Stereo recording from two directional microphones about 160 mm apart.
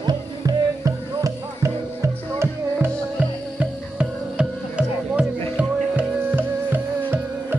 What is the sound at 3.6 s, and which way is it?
Music, 5° right (ahead or behind).